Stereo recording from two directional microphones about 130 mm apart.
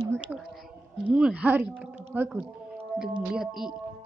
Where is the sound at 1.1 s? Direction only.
10° right (ahead or behind).